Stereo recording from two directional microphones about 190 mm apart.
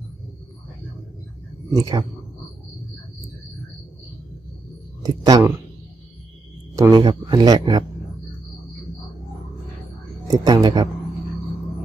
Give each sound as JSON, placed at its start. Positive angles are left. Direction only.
{"t": 1.8, "sound": "speech", "side_deg": -20}
{"t": 5.0, "sound": "speech", "side_deg": -20}
{"t": 6.7, "sound": "speech", "side_deg": -20}
{"t": 10.2, "sound": "speech", "side_deg": -20}